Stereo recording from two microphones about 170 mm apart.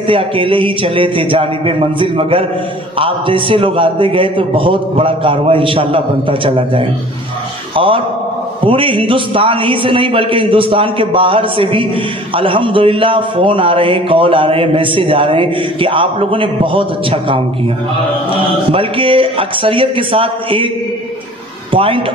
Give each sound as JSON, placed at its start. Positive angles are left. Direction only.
{"t": 0.0, "sound": "a man's voice", "side_deg": -30}
{"t": 18.7, "sound": "a man's voice", "side_deg": -30}
{"t": 21.7, "sound": "a man's voice", "side_deg": -30}